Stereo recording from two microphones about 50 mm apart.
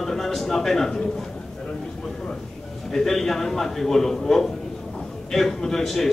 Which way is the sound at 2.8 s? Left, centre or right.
Centre.